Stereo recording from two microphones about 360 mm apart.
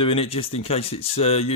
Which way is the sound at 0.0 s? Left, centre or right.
Centre.